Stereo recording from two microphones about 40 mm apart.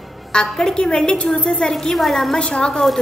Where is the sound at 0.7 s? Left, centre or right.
Left.